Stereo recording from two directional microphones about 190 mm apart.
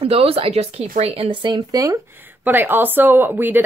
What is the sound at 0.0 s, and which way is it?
Speech, 30° right (ahead or behind).